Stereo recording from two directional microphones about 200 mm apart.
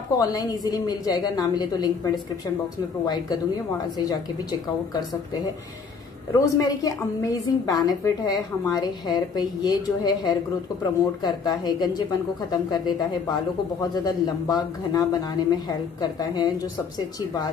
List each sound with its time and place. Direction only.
0.2 s speech: 20° left (ahead or behind)
4.0 s speech: 20° left (ahead or behind)
6.3 s speech: 15° left (ahead or behind)